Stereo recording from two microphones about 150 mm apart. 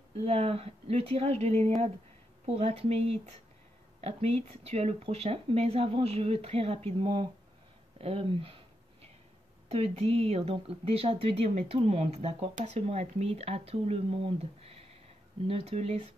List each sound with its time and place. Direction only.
0.2 s speech: 40° right (ahead or behind)
4.6 s speech: 45° right (ahead or behind)
9.7 s speech: 40° right (ahead or behind)